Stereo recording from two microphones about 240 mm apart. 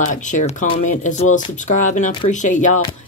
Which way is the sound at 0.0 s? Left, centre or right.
Left.